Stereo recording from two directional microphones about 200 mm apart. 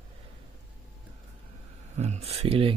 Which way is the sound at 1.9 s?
35° right (ahead or behind).